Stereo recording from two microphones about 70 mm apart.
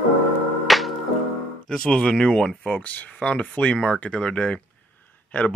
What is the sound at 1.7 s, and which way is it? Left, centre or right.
Speech, centre.